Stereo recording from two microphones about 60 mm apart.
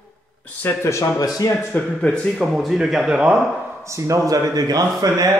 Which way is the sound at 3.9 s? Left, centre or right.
Right.